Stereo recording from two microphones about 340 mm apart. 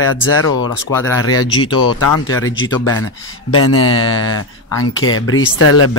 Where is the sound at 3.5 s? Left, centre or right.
Left.